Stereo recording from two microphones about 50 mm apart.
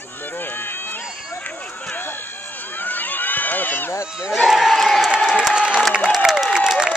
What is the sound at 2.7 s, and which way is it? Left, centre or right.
Run, left.